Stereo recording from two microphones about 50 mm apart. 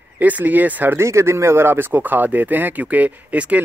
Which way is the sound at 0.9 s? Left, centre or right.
Right.